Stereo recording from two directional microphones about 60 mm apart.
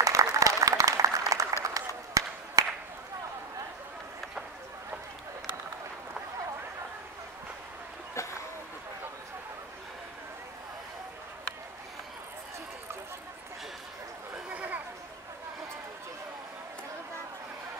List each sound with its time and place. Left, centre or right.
0.0 s applause: right
8.1 s a sound: left
14.5 s chatter: right